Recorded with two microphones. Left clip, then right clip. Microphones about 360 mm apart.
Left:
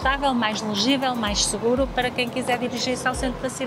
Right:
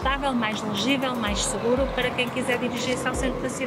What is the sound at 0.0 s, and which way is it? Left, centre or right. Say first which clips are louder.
Speech: left 3 dB; left.